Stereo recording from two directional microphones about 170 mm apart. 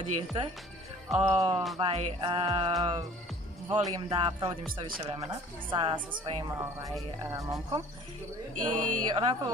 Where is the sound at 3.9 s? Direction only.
20° right (ahead or behind).